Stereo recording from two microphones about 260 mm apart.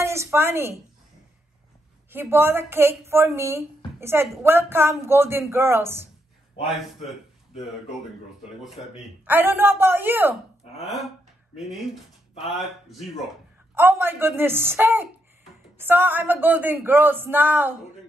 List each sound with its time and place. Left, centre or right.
0.0 s a sound: centre
2.0 s a woman's voice: centre
8.6 s a woman's voice: centre
11.5 s a man's voice: centre